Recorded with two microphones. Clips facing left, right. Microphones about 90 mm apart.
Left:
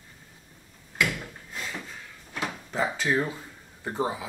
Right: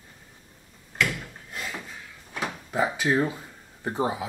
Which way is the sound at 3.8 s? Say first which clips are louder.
Right 2 dB; 15° right (ahead or behind).